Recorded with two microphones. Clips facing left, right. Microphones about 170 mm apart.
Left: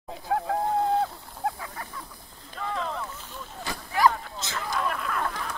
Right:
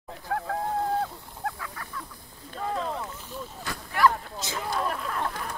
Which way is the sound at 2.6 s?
40° right (ahead or behind).